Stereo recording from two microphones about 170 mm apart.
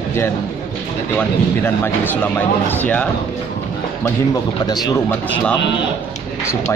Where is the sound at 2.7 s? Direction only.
10° left (ahead or behind).